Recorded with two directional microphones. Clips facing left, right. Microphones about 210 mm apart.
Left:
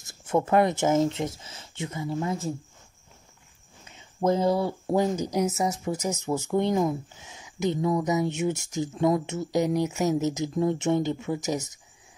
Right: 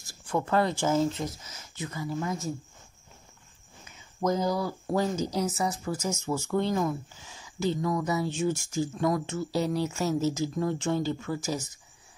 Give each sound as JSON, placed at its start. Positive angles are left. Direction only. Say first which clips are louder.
{"t": 0.0, "sound": "speech", "louder": "left 5 dB", "side_deg": 25}
{"t": 3.9, "sound": "a sound", "louder": "left 3 dB", "side_deg": 30}
{"t": 4.9, "sound": "speech", "louder": "left 3 dB", "side_deg": 15}